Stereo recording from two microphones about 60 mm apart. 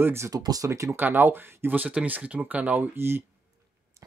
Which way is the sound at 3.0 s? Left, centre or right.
Right.